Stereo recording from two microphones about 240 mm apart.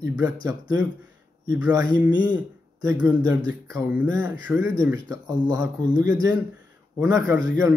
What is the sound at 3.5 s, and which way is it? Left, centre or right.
A man's voice, centre.